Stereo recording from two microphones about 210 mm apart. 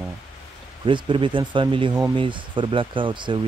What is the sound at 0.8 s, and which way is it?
Speech, 25° right (ahead or behind).